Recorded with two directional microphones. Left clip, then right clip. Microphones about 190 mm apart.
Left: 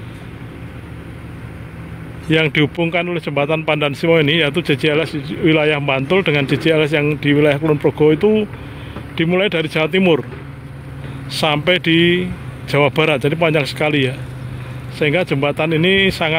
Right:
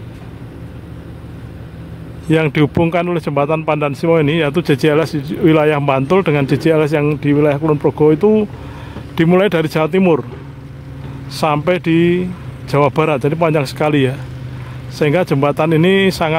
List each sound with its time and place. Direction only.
2.2 s speech: 10° right (ahead or behind)
11.3 s speech: 5° right (ahead or behind)